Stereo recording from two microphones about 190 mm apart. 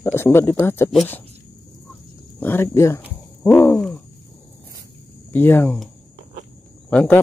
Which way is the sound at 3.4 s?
15° left (ahead or behind).